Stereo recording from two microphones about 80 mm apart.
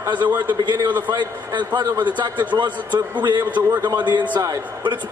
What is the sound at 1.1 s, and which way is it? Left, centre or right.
A man's voice, right.